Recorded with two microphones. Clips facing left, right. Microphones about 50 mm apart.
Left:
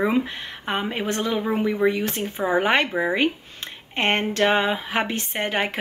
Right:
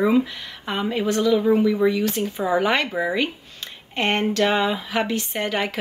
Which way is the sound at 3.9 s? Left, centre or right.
Left.